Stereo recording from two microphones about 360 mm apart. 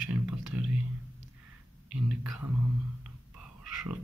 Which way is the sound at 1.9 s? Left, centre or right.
Centre.